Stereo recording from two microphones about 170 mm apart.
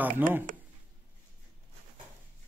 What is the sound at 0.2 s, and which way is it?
Speech, 10° right (ahead or behind).